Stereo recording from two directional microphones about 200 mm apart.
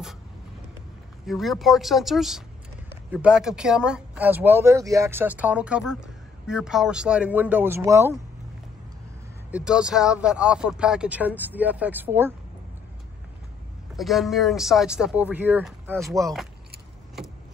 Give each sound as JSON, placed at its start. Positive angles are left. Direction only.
{"t": 1.2, "sound": "speech", "side_deg": 0}
{"t": 9.5, "sound": "speech", "side_deg": -5}
{"t": 13.9, "sound": "speech", "side_deg": 0}
{"t": 16.1, "sound": "speech", "side_deg": -15}